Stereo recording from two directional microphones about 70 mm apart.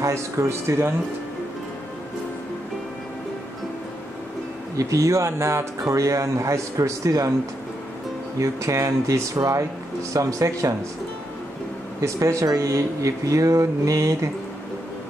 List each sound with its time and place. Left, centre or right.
0.0 s speech: right
4.7 s speech: right
8.4 s speech: right
12.0 s speech: right